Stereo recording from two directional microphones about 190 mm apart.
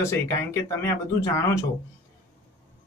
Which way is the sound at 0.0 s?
15° left (ahead or behind).